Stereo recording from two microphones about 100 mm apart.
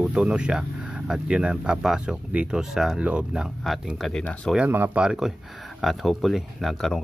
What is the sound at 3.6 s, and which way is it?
Speech, centre (ahead or behind).